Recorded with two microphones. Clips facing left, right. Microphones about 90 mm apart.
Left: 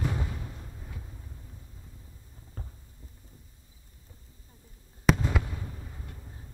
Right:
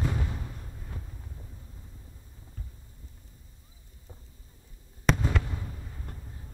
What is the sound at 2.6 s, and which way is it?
Heart sounds, 45° left (ahead or behind).